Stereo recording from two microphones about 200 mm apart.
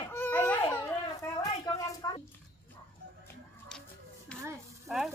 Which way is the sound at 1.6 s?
15° left (ahead or behind).